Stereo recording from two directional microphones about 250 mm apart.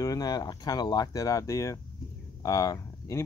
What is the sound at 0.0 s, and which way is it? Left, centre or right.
Speech, centre.